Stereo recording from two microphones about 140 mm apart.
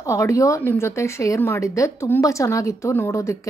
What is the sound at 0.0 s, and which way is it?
A woman's voice, 20° left (ahead or behind).